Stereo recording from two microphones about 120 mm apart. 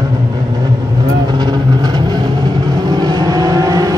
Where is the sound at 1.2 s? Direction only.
35° right (ahead or behind).